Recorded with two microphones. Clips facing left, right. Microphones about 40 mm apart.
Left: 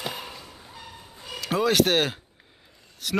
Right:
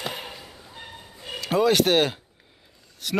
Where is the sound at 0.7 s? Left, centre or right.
Right.